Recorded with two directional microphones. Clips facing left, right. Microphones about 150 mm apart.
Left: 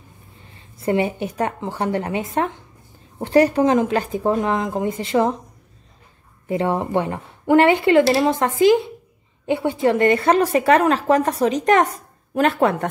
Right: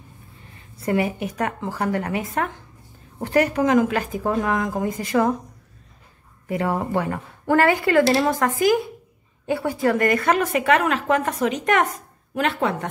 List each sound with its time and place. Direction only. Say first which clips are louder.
0.8 s speech: left 2 dB; 25° left (ahead or behind)
6.4 s a woman's voice: left 3 dB; 25° left (ahead or behind); by 12.7 s 45° left (ahead or behind)